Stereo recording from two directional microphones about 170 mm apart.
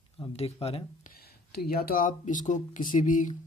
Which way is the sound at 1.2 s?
70° left (ahead or behind).